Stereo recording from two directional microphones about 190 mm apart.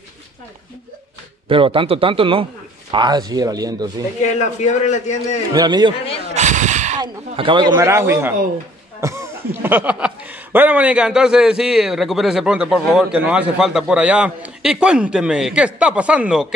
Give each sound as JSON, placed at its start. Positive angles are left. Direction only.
{"t": 1.5, "sound": "speech", "side_deg": -25}
{"t": 4.6, "sound": "a man's voice", "side_deg": 40}
{"t": 5.5, "sound": "speech", "side_deg": -20}
{"t": 6.2, "sound": "a sound", "side_deg": -40}
{"t": 7.0, "sound": "speech", "side_deg": -25}
{"t": 9.0, "sound": "cough", "side_deg": -15}
{"t": 9.6, "sound": "a man's voice", "side_deg": -10}